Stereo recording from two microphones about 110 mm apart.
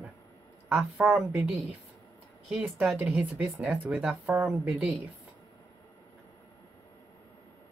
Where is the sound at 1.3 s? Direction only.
15° right (ahead or behind).